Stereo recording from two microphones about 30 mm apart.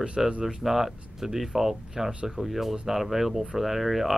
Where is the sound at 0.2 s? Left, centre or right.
Centre.